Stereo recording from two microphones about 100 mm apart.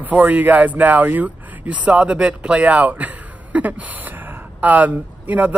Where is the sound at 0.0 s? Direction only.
15° right (ahead or behind).